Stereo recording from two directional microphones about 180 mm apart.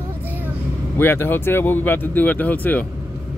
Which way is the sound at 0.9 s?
10° left (ahead or behind).